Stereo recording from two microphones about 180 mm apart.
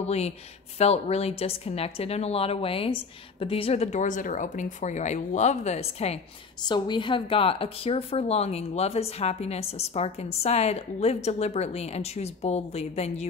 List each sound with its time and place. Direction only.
0.0 s speech: 35° left (ahead or behind)
6.6 s speech: 25° left (ahead or behind)